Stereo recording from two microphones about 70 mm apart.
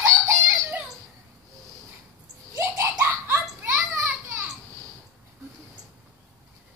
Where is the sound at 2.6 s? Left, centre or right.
Right.